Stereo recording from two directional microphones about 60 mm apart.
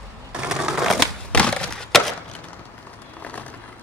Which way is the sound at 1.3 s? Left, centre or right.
Centre.